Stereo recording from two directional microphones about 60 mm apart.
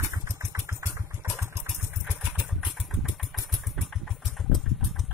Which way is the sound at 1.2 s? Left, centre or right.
Right.